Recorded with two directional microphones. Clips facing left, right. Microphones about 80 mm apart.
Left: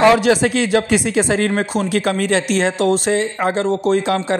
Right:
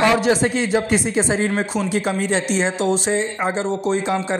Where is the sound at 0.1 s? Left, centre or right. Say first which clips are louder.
Left 3 dB; left.